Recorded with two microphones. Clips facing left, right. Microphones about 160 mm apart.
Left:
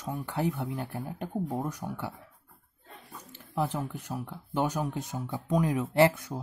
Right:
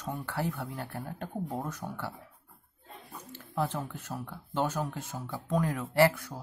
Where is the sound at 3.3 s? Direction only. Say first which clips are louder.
Left 1 dB; 15° left (ahead or behind).